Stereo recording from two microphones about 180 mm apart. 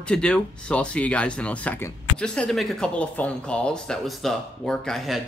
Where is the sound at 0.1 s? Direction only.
5° left (ahead or behind).